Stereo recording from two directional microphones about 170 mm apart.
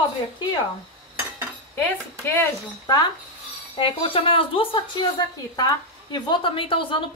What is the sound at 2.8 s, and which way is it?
A woman's voice, 25° left (ahead or behind).